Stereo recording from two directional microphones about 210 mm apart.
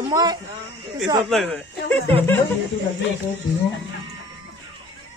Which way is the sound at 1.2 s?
Centre (ahead or behind).